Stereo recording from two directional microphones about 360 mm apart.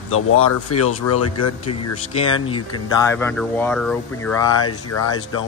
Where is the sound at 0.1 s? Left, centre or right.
Left.